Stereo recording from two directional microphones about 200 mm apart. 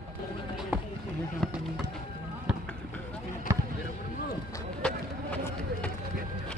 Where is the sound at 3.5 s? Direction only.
15° right (ahead or behind).